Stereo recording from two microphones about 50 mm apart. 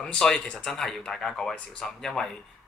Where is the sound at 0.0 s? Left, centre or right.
Centre.